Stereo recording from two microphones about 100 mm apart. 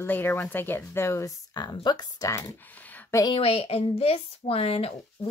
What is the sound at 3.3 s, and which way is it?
Speech, 75° left (ahead or behind).